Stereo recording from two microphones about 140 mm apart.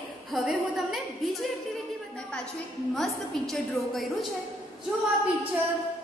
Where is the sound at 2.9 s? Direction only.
Centre (ahead or behind).